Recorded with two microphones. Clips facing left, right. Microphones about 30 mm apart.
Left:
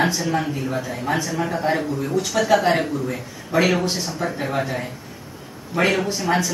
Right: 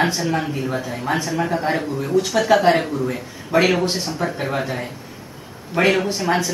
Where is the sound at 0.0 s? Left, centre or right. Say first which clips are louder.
Right 1 dB; centre.